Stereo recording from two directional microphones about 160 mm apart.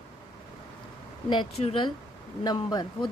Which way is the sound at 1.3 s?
35° left (ahead or behind).